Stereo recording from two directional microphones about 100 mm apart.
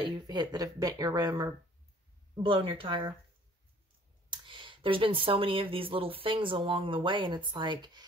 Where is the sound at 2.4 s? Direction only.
60° right (ahead or behind).